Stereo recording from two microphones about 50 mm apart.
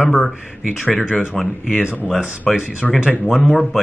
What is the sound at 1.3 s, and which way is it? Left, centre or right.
Speech, centre.